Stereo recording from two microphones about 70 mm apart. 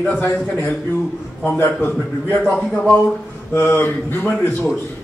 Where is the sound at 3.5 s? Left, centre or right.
Left.